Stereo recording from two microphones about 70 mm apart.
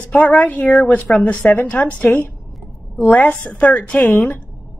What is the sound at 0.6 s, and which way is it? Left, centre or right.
Speech, centre.